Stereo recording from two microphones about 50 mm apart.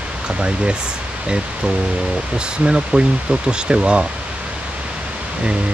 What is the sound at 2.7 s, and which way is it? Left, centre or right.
Speech, right.